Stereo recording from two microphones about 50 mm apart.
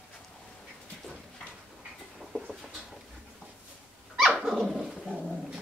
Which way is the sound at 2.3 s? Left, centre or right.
Centre.